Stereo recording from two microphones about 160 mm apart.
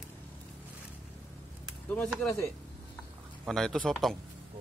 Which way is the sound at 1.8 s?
10° left (ahead or behind).